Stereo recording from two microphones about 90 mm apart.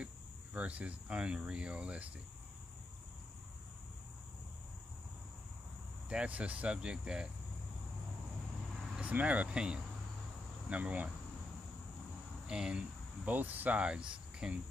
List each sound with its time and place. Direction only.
0.0 s speech: 15° right (ahead or behind)
6.0 s speech: 15° right (ahead or behind)
9.0 s speech: 15° right (ahead or behind)
12.4 s speech: 10° right (ahead or behind)